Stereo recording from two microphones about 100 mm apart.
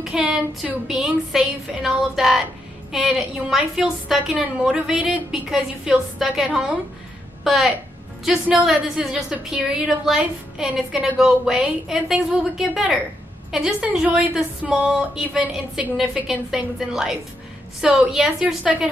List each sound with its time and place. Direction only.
0.0 s a woman's voice: 5° right (ahead or behind)
13.8 s a woman's voice: 15° right (ahead or behind)